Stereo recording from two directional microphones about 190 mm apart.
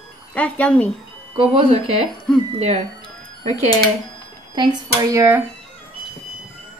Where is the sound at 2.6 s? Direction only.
35° right (ahead or behind).